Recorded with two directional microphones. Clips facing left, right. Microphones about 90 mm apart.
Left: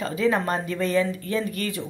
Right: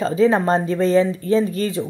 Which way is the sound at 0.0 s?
30° right (ahead or behind).